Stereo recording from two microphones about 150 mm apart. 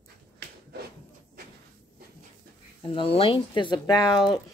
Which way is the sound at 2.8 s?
35° left (ahead or behind).